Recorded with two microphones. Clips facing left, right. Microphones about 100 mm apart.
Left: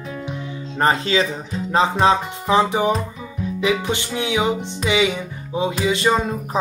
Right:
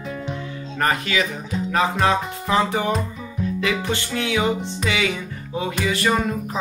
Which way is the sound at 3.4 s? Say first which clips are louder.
Left 3 dB; 15° left (ahead or behind).